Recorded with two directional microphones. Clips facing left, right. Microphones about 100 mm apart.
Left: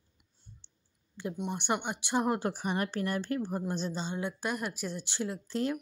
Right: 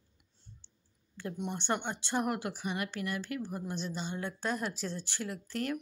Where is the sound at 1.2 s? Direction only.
20° left (ahead or behind).